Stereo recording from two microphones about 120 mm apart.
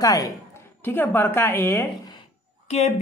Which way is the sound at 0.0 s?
30° left (ahead or behind).